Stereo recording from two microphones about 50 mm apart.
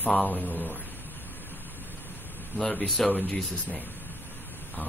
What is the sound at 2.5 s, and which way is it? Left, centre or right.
Speech, left.